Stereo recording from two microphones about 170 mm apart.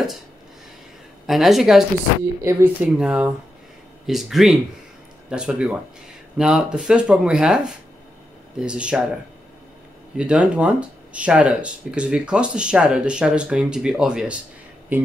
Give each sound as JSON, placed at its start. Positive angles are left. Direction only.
{"t": 1.2, "sound": "speech", "side_deg": 0}
{"t": 10.1, "sound": "speech", "side_deg": -5}